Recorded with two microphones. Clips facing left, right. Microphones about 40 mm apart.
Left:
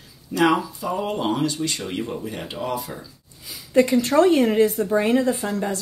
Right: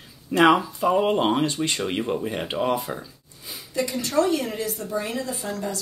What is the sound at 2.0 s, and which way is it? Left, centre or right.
Speech, centre.